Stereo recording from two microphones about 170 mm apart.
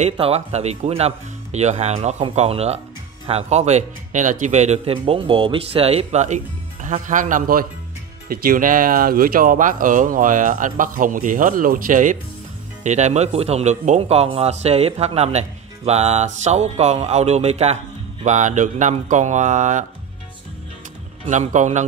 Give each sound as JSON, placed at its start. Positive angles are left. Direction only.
{"t": 0.0, "sound": "a man's voice", "side_deg": -40}
{"t": 21.3, "sound": "speech", "side_deg": -45}